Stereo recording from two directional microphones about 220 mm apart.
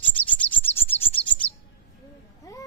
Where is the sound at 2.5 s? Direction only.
15° left (ahead or behind).